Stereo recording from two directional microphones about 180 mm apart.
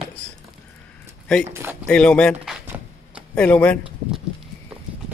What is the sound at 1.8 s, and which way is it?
Speech, 5° left (ahead or behind).